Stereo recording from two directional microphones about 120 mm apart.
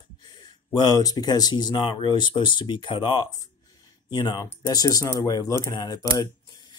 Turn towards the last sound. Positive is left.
turn(degrees=30)  # may be behind; listen again after turning